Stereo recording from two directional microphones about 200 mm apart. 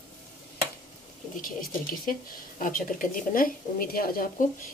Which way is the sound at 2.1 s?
45° left (ahead or behind).